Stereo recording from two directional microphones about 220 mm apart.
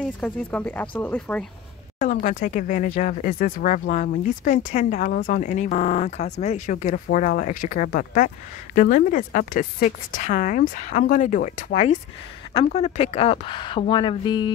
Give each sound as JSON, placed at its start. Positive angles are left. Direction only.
{"t": 0.0, "sound": "speech", "side_deg": 5}
{"t": 2.0, "sound": "speech", "side_deg": 35}